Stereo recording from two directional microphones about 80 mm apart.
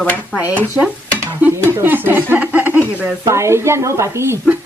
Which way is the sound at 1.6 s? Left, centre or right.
Right.